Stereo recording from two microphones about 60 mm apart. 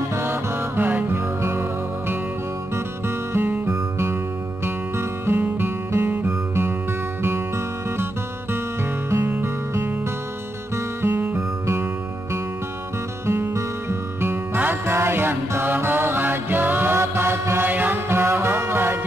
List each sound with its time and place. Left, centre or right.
0.1 s music: right
3.3 s music: right
7.2 s music: right
11.0 s music: right
13.3 s music: right
17.6 s music: right